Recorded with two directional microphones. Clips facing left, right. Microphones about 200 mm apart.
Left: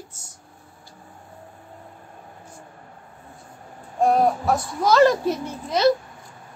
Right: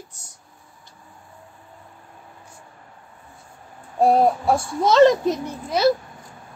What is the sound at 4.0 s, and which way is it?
A child's voice, 30° right (ahead or behind).